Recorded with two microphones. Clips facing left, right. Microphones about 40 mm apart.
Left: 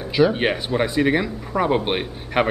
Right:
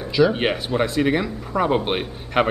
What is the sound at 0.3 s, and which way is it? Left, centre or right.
A man's voice, centre.